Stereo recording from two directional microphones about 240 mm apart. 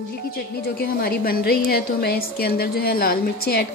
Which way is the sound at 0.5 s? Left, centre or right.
Left.